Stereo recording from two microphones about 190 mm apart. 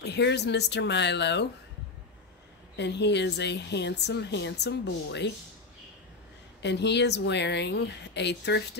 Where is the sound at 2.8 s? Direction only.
65° left (ahead or behind).